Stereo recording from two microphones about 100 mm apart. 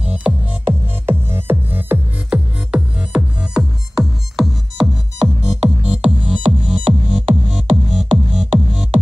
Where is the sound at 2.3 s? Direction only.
10° right (ahead or behind).